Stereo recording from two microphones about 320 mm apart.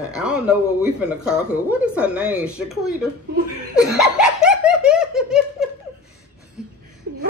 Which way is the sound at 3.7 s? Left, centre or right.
Centre.